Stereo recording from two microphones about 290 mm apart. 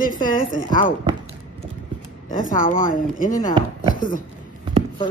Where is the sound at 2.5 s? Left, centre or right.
Left.